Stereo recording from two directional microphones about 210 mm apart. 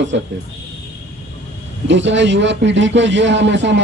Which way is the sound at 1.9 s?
60° right (ahead or behind).